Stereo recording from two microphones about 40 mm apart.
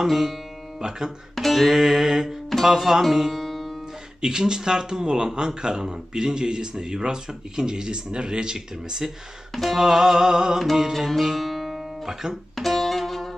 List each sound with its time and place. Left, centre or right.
0.0 s music: centre
0.7 s speech: centre
1.3 s speech: centre
4.2 s speech: centre
9.5 s music: centre
9.8 s speech: centre
10.6 s music: centre
11.2 s guitar: centre
12.5 s music: centre